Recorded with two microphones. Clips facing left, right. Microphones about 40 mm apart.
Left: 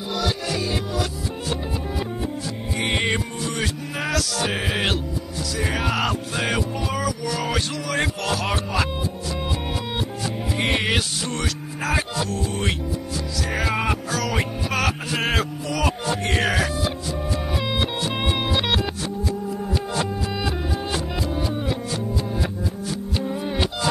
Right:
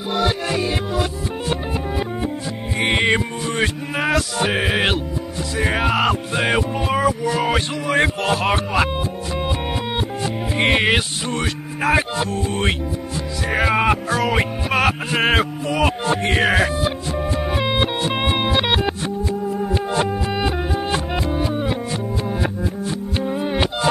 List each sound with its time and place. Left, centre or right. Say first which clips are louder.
0.1 s music: right 5 dB; right
2.8 s music: right 6 dB; right
9.9 s music: right 4 dB; right
11.8 s speech: right 6 dB; right
13.5 s music: right 7 dB; right